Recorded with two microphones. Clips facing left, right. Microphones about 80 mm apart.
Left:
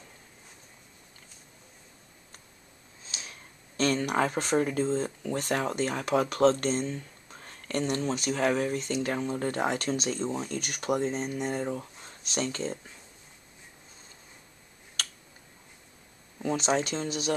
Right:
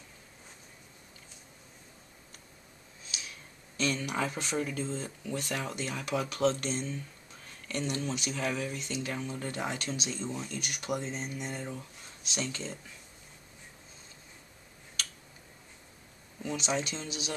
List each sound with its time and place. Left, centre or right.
3.1 s a sound: left
3.7 s speech: left
16.4 s speech: left